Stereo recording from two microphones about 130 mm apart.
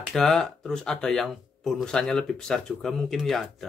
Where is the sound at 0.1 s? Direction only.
5° left (ahead or behind).